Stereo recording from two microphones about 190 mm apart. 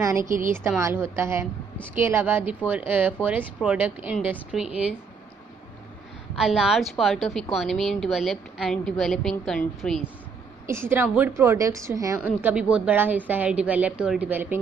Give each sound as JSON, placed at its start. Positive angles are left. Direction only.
{"t": 0.0, "sound": "a woman's voice", "side_deg": -15}
{"t": 6.3, "sound": "a woman's voice", "side_deg": 0}
{"t": 10.7, "sound": "a woman's voice", "side_deg": -10}